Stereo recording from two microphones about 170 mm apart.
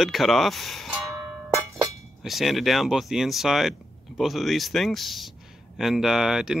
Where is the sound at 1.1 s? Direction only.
20° right (ahead or behind).